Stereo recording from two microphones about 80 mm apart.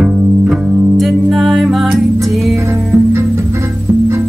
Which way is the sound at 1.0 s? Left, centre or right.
Centre.